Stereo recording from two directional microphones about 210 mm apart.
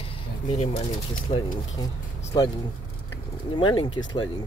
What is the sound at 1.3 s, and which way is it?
Speech, 35° left (ahead or behind).